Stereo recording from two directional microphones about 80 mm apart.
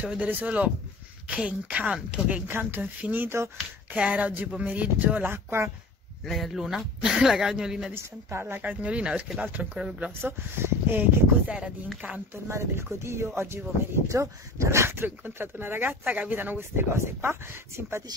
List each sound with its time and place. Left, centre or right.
0.0 s a woman's voice: centre
6.2 s speech: centre
7.9 s a woman's voice: right; by 10.1 s centre
10.2 s speech: right
11.4 s a woman's voice: centre
12.4 s speech: right